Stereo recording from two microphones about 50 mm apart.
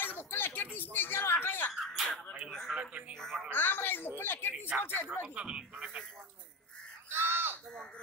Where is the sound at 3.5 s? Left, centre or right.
Left.